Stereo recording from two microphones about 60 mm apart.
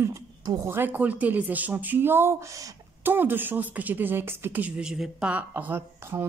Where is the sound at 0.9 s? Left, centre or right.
Right.